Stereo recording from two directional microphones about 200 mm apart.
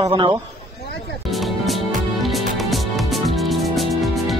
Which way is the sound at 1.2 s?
Centre (ahead or behind).